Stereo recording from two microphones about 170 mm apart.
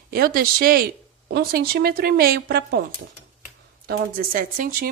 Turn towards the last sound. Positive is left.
turn(degrees=-55)  # may be behind; listen again after turning